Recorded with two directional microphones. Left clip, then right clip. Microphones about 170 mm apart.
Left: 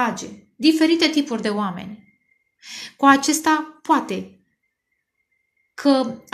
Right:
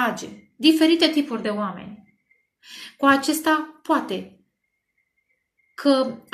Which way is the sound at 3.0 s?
45° left (ahead or behind).